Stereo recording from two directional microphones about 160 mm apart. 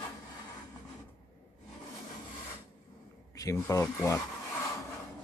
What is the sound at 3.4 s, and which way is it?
Speech, 20° left (ahead or behind).